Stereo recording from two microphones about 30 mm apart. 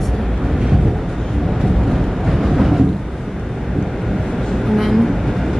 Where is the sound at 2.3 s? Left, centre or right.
Centre.